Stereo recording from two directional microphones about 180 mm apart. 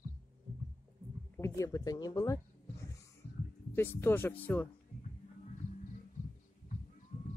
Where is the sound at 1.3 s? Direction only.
15° left (ahead or behind).